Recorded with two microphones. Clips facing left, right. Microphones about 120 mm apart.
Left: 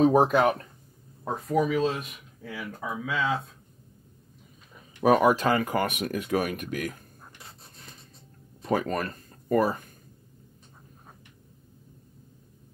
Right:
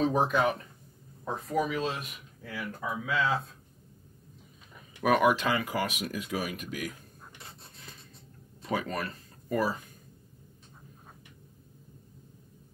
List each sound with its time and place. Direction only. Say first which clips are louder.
0.1 s speech: left 6 dB; 50° left (ahead or behind)
1.3 s speech: left 5 dB; centre (ahead or behind)
5.0 s speech: left 4 dB; 35° left (ahead or behind); by 7.0 s 55° left (ahead or behind)
8.7 s speech: left 5 dB; 45° left (ahead or behind)